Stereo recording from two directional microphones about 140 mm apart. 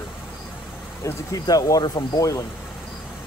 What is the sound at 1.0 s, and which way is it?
Speech, 25° left (ahead or behind).